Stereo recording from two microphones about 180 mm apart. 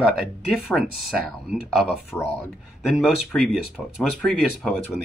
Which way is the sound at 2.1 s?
10° left (ahead or behind).